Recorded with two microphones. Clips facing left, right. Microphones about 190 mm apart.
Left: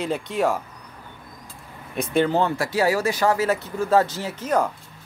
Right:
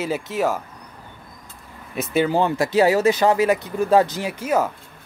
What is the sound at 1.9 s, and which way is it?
Speech, 5° right (ahead or behind).